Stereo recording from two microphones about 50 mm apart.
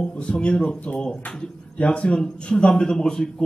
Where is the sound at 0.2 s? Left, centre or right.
Left.